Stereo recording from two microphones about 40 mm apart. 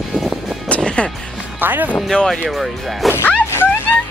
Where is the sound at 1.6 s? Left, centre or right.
Right.